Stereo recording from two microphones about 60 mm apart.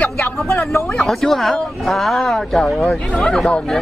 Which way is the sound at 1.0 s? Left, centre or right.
Centre.